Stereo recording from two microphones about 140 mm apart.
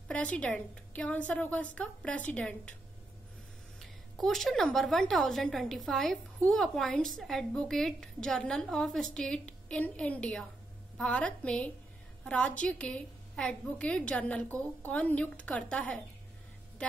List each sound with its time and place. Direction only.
0.1 s a woman's voice: 10° left (ahead or behind)
3.8 s a woman's voice: centre (ahead or behind)